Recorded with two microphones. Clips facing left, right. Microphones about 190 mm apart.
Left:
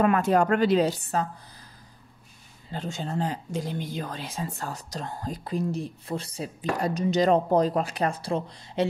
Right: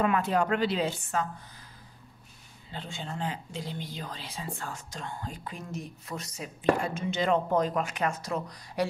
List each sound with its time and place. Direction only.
0.0 s a woman's voice: 45° left (ahead or behind)
2.7 s speech: 40° left (ahead or behind); by 8.8 s 25° left (ahead or behind)